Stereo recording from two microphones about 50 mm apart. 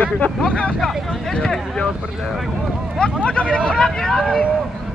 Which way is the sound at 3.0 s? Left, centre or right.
Left.